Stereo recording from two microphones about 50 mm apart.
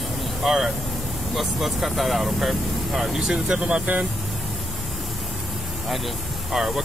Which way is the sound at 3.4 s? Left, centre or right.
Centre.